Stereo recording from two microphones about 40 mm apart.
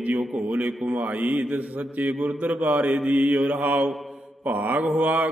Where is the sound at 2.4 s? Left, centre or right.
Right.